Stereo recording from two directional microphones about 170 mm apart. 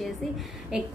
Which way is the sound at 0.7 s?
5° right (ahead or behind).